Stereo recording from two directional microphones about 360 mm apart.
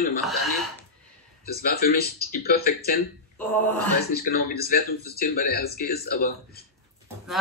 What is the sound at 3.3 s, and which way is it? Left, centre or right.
Speech, centre.